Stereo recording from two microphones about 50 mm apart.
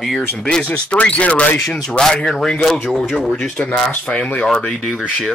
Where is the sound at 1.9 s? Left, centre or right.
Centre.